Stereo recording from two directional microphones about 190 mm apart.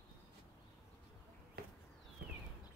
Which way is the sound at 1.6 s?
55° right (ahead or behind).